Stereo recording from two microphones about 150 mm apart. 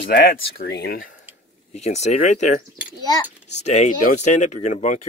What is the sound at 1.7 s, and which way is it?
Speech, 50° left (ahead or behind).